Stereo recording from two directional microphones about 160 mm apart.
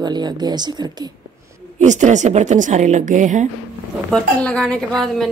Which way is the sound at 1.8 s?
50° right (ahead or behind).